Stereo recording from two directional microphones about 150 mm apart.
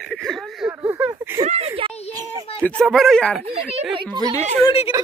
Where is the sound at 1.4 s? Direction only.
40° right (ahead or behind).